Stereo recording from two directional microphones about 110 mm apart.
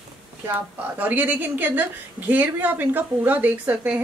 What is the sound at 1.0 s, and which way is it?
A woman's voice, 15° right (ahead or behind).